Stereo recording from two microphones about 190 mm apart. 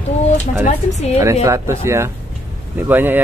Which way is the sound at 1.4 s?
15° right (ahead or behind).